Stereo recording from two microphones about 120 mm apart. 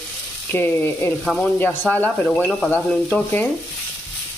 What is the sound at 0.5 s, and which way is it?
Speech, 15° left (ahead or behind).